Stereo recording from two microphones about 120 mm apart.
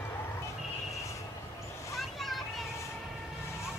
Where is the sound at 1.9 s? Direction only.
Centre (ahead or behind).